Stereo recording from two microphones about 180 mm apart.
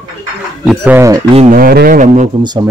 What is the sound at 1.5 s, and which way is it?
Speech, 55° right (ahead or behind).